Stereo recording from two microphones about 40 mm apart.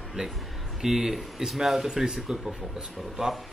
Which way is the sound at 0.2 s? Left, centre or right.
Centre.